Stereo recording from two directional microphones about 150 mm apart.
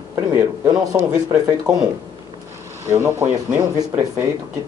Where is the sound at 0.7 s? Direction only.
25° right (ahead or behind).